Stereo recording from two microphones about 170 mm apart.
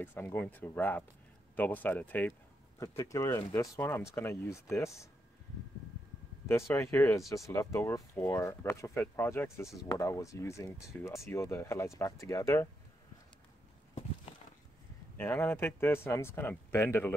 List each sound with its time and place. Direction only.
0.0 s speech: 10° left (ahead or behind)
2.8 s speech: 20° left (ahead or behind)
6.7 s speech: 15° left (ahead or behind)
15.1 s speech: 10° left (ahead or behind)